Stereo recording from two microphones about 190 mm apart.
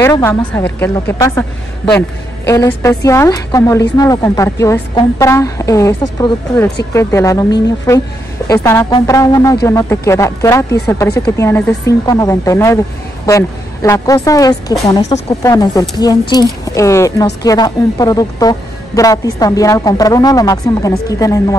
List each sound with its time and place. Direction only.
0.0 s speech: 15° left (ahead or behind)